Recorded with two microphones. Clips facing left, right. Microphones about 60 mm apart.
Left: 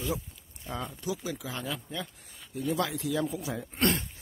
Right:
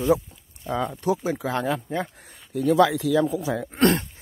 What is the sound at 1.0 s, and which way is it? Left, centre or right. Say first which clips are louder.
Speech: right 10 dB; right.